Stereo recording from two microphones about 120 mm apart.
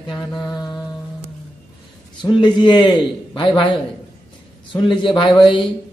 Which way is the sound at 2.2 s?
40° left (ahead or behind).